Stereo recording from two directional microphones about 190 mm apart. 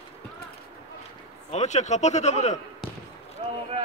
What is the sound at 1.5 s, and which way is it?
A man's voice, 35° left (ahead or behind).